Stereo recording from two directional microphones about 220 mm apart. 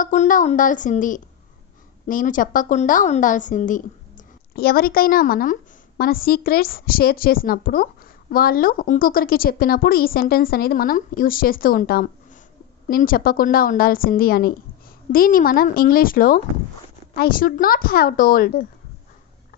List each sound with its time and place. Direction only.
0.0 s a woman's voice: 35° left (ahead or behind)